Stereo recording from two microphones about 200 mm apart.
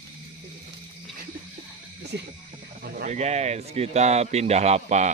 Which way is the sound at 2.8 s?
50° right (ahead or behind).